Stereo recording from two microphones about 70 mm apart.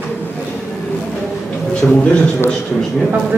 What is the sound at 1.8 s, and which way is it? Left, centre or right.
Speech, centre.